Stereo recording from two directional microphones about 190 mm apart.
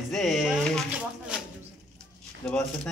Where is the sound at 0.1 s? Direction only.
Centre (ahead or behind).